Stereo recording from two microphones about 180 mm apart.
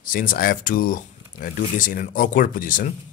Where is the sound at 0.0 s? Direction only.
50° left (ahead or behind).